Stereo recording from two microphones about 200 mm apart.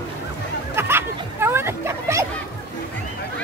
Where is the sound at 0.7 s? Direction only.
10° right (ahead or behind).